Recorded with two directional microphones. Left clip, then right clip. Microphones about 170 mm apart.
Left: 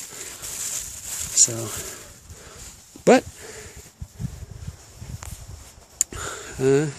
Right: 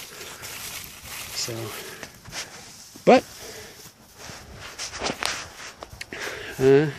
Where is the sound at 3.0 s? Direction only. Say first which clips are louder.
Even; 55° left (ahead or behind).